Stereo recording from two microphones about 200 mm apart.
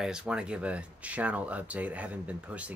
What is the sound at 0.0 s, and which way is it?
Speech, 5° right (ahead or behind).